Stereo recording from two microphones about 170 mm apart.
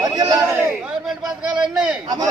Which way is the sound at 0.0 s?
20° right (ahead or behind).